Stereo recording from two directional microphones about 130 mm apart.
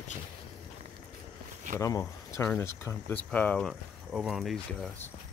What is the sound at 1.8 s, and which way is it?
Speech, 25° left (ahead or behind).